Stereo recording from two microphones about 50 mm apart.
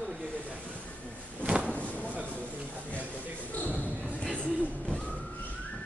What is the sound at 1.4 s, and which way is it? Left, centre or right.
Drawer open or close, right.